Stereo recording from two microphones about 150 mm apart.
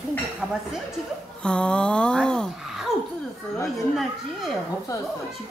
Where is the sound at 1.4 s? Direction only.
5° left (ahead or behind).